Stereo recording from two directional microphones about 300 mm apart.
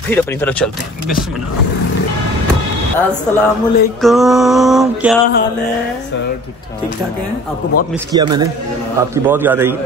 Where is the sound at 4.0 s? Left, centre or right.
Centre.